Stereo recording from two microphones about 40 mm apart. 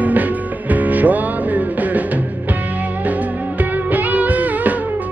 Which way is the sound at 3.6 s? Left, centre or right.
Right.